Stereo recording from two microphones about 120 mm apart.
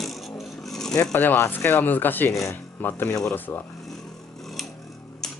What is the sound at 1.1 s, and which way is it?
Speech, 20° left (ahead or behind).